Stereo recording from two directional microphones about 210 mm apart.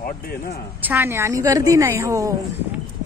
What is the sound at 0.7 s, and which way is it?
Speech, 10° right (ahead or behind).